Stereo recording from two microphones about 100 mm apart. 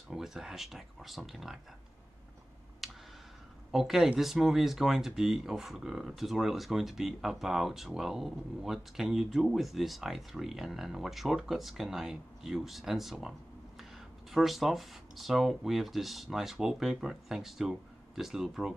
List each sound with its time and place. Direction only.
0.1 s speech: 5° right (ahead or behind)
2.8 s a sound: centre (ahead or behind)
3.7 s speech: 5° right (ahead or behind)
14.3 s speech: centre (ahead or behind)